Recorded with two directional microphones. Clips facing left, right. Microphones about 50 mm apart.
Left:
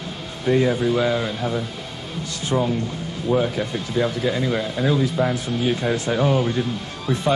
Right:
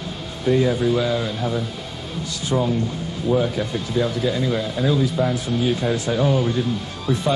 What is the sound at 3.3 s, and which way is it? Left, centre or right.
Speech, left.